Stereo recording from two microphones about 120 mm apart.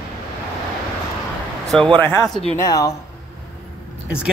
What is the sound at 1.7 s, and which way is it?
Speech, 5° left (ahead or behind).